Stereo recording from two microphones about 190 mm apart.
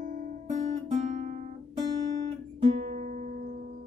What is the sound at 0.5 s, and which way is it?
Guitar, 40° right (ahead or behind).